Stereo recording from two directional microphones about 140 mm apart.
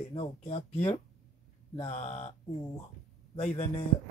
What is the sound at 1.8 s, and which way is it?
Speech, 55° left (ahead or behind).